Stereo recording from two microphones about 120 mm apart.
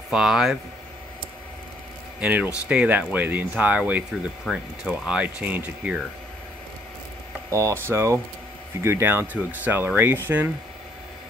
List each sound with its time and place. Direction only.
0.1 s speech: 5° right (ahead or behind)
2.1 s a man's voice: 15° right (ahead or behind)
7.4 s speech: 25° right (ahead or behind)